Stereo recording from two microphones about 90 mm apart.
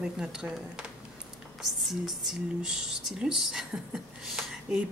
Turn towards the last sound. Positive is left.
turn(degrees=-5)  # may be behind; listen again after turning